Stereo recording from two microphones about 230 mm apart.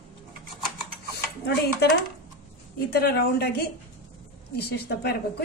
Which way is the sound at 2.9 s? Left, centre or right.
Left.